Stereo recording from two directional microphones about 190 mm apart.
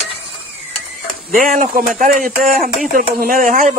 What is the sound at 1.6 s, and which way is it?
Speech, 45° right (ahead or behind).